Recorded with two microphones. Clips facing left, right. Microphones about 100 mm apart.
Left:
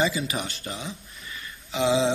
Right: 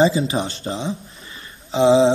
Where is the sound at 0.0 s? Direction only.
30° right (ahead or behind).